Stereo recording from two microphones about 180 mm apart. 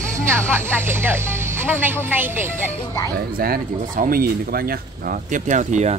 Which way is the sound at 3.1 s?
55° right (ahead or behind).